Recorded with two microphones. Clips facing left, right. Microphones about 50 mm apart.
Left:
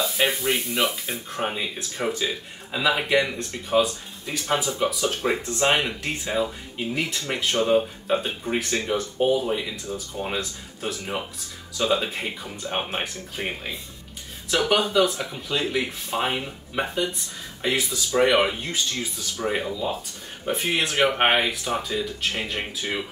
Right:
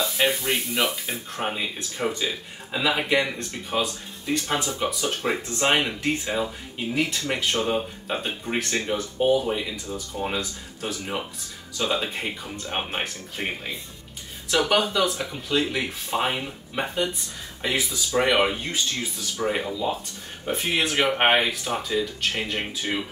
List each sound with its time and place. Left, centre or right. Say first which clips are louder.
0.2 s speech: even; centre
12.6 s speech: left 2 dB; centre
14.5 s speech: even; centre